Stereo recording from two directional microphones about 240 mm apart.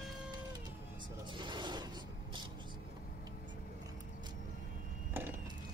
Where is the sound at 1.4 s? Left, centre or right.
Centre.